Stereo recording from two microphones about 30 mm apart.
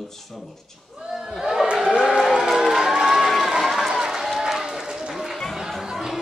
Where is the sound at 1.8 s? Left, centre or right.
Right; by 3.5 s centre.